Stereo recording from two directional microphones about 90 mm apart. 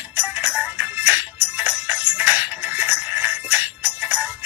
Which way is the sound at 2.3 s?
20° right (ahead or behind).